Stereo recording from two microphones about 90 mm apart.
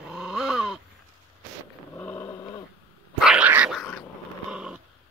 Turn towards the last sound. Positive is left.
turn(degrees=-10)  # may be behind; listen again after turning